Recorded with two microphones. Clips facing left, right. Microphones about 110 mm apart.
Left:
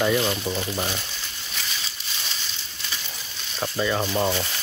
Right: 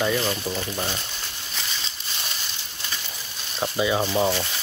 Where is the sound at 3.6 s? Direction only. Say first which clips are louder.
Right 2 dB; 10° right (ahead or behind).